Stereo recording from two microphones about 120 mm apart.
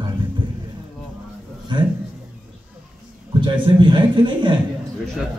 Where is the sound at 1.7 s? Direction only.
40° right (ahead or behind).